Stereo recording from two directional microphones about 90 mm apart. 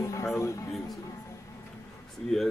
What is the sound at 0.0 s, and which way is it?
Speech, 35° left (ahead or behind).